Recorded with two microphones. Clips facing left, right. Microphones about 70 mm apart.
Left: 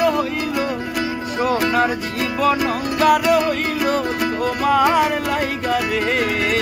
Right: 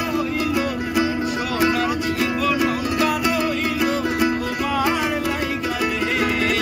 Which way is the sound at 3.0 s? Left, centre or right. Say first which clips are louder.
Left 8 dB; left.